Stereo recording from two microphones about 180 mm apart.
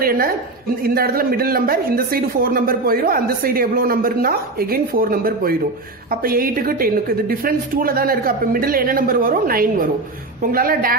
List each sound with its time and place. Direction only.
0.8 s a woman's voice: 55° right (ahead or behind)